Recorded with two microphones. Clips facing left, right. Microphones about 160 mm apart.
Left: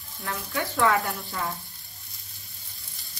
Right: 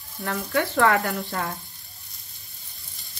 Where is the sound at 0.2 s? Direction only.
60° right (ahead or behind).